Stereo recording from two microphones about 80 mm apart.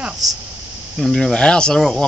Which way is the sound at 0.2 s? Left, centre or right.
Centre.